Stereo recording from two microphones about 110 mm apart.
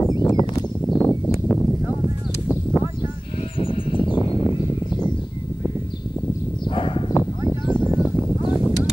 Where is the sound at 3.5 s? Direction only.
55° left (ahead or behind).